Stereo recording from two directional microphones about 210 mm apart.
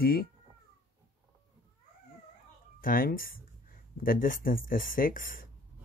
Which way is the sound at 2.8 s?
40° left (ahead or behind).